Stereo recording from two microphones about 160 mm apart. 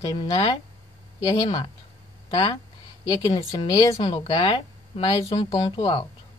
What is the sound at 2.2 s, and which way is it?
A woman's voice, 30° left (ahead or behind).